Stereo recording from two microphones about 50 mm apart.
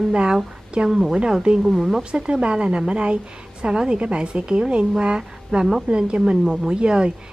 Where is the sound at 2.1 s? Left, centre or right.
Centre.